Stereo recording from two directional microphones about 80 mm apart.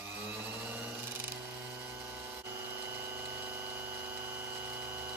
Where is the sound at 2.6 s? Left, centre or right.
Right.